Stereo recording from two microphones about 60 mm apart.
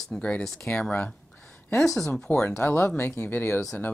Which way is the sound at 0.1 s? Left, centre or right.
Centre.